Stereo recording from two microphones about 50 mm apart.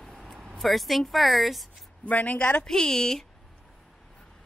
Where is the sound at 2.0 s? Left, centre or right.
Left.